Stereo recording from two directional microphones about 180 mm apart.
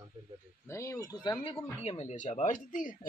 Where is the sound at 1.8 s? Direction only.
40° left (ahead or behind).